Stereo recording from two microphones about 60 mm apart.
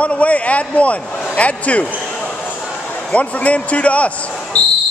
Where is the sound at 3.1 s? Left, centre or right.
Left.